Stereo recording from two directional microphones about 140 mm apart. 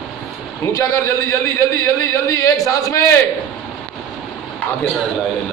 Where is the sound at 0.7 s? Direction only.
20° left (ahead or behind).